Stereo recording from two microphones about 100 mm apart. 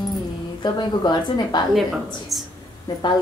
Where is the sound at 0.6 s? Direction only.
45° left (ahead or behind).